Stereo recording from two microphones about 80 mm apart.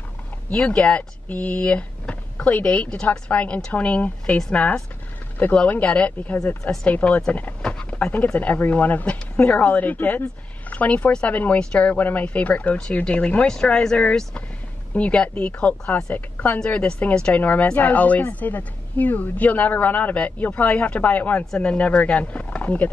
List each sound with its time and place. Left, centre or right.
0.5 s a woman's voice: centre